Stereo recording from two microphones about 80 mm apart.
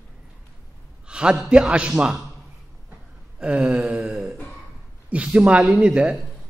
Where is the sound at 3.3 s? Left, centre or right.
Centre.